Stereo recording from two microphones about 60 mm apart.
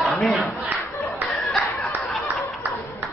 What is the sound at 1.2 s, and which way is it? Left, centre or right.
Snicker, centre.